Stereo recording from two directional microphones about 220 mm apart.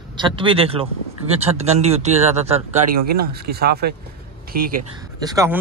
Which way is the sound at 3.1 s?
45° right (ahead or behind).